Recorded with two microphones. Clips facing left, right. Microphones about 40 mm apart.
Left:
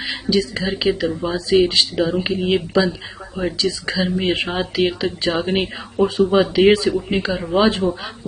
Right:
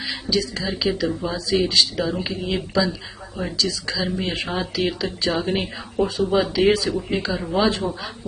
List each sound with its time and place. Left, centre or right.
0.0 s a sound: left
0.7 s speech: left
7.5 s speech: left